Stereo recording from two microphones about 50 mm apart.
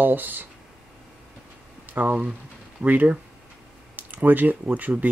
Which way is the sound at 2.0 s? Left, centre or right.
Right.